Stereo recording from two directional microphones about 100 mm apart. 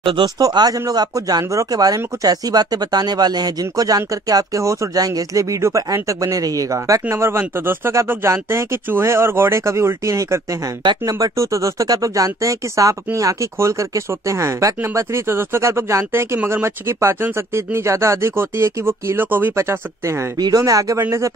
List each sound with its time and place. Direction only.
0.0 s speech: 55° right (ahead or behind)
0.4 s speech: 40° right (ahead or behind)
10.8 s speech: 45° right (ahead or behind); by 20.2 s 25° right (ahead or behind)
20.3 s speech: 40° right (ahead or behind)